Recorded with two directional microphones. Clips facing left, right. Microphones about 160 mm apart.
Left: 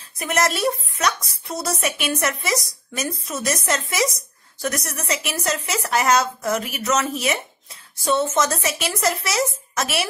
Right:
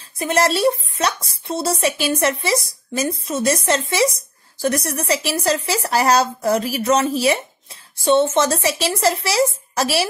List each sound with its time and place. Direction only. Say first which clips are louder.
0.2 s speech: right 4 dB; 30° right (ahead or behind)